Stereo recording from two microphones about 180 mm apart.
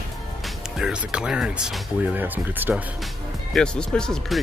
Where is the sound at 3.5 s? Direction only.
5° left (ahead or behind).